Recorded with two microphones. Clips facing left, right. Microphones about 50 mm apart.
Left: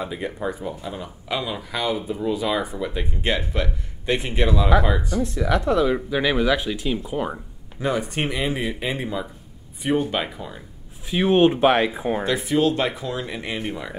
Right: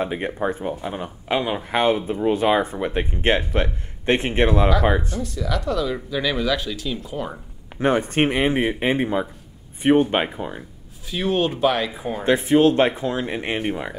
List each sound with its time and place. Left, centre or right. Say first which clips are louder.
0.0 s speech: right 4 dB; right
5.1 s speech: left 4 dB; left
7.7 s speech: right 5 dB; right
11.1 s speech: left 5 dB; left
12.3 s speech: right 7 dB; right